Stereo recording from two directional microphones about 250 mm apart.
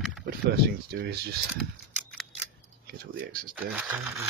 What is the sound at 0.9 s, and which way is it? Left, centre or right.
Speech, right.